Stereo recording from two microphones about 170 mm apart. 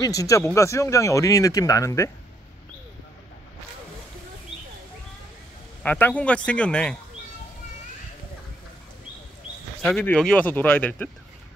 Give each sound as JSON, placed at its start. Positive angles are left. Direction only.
{"t": 0.0, "sound": "speech", "side_deg": 20}
{"t": 5.8, "sound": "speech", "side_deg": 10}
{"t": 9.8, "sound": "speech", "side_deg": 5}